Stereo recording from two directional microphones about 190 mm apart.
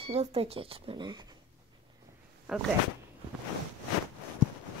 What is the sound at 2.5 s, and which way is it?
Speech, 5° right (ahead or behind).